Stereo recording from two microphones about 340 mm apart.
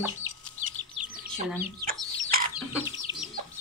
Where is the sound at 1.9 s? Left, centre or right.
Right.